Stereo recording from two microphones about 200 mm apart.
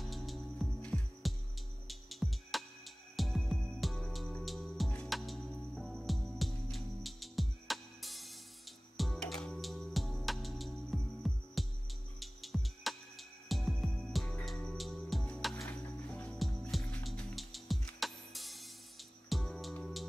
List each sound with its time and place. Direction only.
0.0 s music: centre (ahead or behind)